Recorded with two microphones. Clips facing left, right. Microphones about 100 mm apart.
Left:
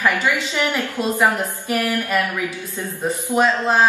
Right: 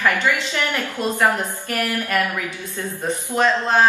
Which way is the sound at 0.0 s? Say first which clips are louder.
Even; 15° left (ahead or behind).